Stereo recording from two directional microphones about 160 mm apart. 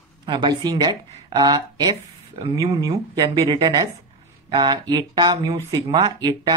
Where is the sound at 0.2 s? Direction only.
30° right (ahead or behind).